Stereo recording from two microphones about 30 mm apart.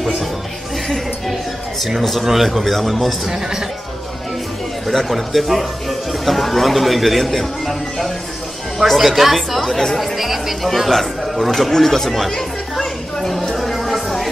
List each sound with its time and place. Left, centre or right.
2.2 s speech: centre
3.3 s a man's voice: centre
4.8 s speech: centre
12.4 s chatter: centre
13.6 s music: centre